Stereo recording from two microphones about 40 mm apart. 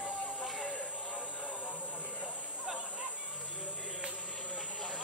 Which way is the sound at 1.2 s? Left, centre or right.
Left.